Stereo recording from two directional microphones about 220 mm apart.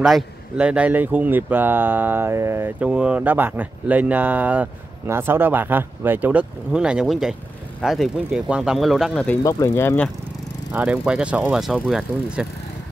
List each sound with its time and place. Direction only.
0.0 s speech: 5° right (ahead or behind)
10.7 s speech: 5° right (ahead or behind)